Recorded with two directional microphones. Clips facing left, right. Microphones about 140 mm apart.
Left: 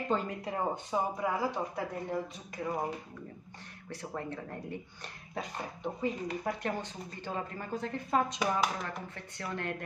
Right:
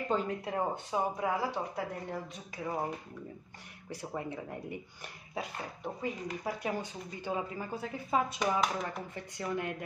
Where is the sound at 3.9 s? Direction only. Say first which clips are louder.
Right 1 dB; 10° right (ahead or behind).